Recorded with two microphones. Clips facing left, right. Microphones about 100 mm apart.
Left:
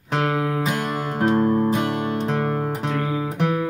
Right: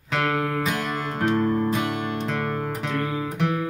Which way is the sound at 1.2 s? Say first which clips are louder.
Left 3 dB; 25° left (ahead or behind).